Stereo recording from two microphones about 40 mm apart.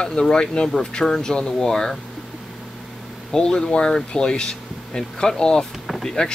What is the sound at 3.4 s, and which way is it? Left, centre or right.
Speech, left.